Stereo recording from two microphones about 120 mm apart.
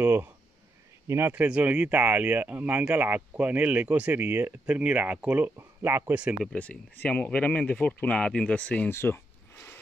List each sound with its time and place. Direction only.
0.0 s speech: 20° right (ahead or behind)
6.3 s speech: centre (ahead or behind)
6.6 s speech: 10° left (ahead or behind)
8.9 s a sound: 20° left (ahead or behind)